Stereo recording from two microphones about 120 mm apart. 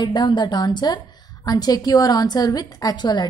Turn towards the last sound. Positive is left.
turn(degrees=40)  # may be behind; listen again after turning